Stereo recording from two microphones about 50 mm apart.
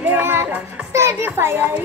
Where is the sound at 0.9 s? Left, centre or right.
Right.